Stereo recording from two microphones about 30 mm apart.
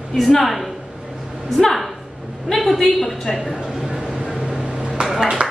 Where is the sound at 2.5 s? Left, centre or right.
Centre.